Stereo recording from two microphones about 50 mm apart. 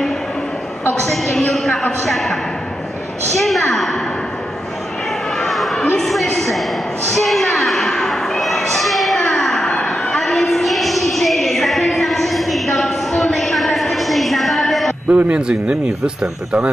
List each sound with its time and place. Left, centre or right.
1.0 s a woman's voice: centre
2.0 s speech: centre
3.3 s speech: centre
5.4 s a sound: centre
7.2 s speech: centre
7.5 s a sound: centre
15.0 s a man's voice: right
15.4 s speech: centre